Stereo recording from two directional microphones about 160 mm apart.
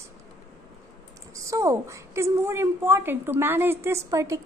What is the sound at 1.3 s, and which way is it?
A woman's voice, 20° right (ahead or behind).